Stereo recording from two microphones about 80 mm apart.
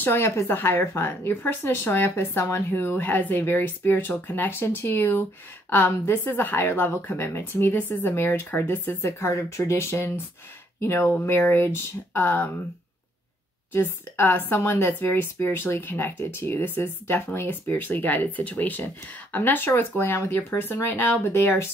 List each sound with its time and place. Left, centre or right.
0.0 s speech: left
13.7 s speech: left